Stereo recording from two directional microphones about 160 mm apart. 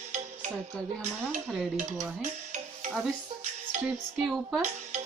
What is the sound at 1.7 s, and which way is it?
Speech, 50° right (ahead or behind).